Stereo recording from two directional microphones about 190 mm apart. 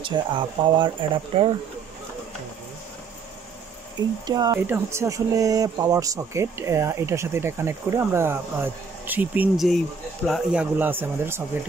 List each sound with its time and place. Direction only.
0.0 s speech: 25° right (ahead or behind)
4.3 s speech: 20° right (ahead or behind)